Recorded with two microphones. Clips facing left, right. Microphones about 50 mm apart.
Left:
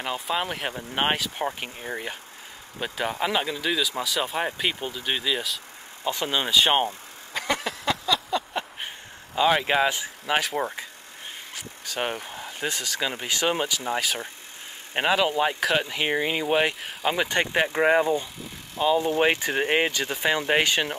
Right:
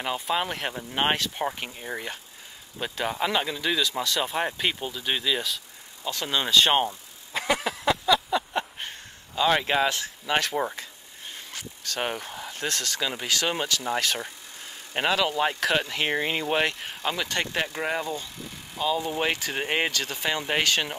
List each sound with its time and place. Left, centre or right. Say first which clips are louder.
0.0 s speech: even; centre
6.0 s speech: left 2 dB; left
7.3 s a sound: right 1 dB; centre
8.7 s a sound: left 1 dB; centre
9.6 s speech: left 1 dB; centre
15.0 s speech: left 2 dB; centre
19.5 s speech: left 3 dB; centre